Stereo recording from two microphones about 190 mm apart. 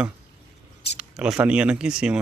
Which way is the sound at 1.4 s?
5° right (ahead or behind).